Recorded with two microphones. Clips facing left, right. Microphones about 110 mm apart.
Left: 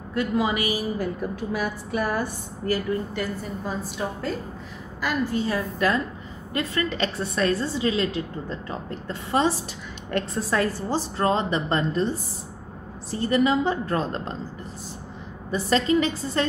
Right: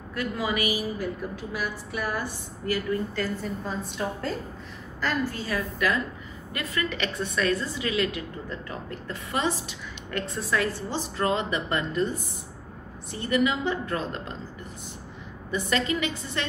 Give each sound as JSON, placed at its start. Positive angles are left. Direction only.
{"t": 0.1, "sound": "a woman's voice", "side_deg": 25}
{"t": 0.9, "sound": "a woman's voice", "side_deg": 45}
{"t": 3.2, "sound": "a woman's voice", "side_deg": 5}
{"t": 5.0, "sound": "a woman's voice", "side_deg": 20}
{"t": 15.5, "sound": "a woman's voice", "side_deg": 35}